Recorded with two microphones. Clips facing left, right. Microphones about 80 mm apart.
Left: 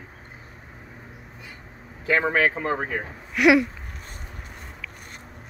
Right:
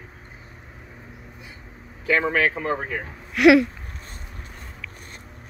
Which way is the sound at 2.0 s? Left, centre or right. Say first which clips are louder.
Even; left.